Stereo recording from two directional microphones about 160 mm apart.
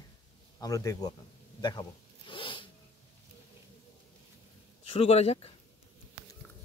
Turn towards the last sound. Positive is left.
turn(degrees=40)  # may be behind; listen again after turning